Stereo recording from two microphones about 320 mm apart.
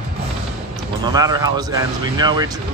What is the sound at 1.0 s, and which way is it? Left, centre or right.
Speech, centre.